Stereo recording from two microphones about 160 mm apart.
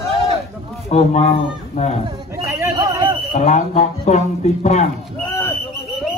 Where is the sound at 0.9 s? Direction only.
45° left (ahead or behind).